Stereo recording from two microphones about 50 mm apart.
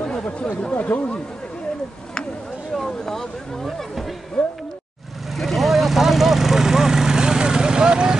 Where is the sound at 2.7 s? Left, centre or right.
Centre.